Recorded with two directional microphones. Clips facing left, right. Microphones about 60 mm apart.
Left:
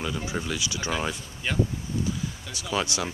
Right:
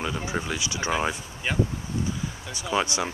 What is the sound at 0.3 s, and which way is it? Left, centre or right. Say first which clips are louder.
Speech: right 1 dB; centre.